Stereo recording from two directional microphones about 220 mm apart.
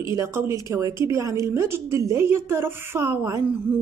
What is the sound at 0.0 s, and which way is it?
A woman's voice, 15° right (ahead or behind).